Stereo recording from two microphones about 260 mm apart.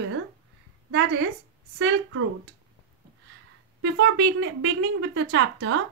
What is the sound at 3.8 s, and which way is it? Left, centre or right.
Speech, right.